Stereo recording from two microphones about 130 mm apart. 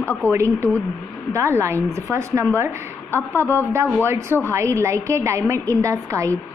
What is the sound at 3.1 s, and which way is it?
Speech, 15° left (ahead or behind).